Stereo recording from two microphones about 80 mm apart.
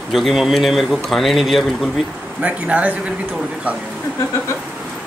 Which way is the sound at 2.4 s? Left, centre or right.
Centre.